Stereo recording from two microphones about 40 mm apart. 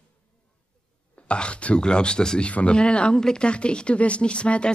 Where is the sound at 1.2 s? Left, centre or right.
Left.